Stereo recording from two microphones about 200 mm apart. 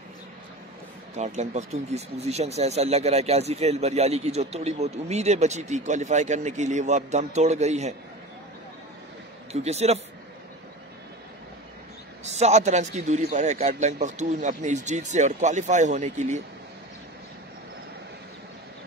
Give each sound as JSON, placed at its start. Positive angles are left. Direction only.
{"t": 1.1, "sound": "speech", "side_deg": -35}
{"t": 9.5, "sound": "speech", "side_deg": -35}
{"t": 12.3, "sound": "speech", "side_deg": -35}